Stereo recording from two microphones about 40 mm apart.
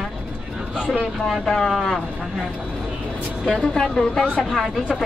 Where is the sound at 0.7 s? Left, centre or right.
Right.